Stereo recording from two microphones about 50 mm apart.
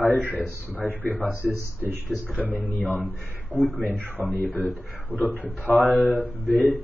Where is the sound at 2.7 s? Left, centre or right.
Left.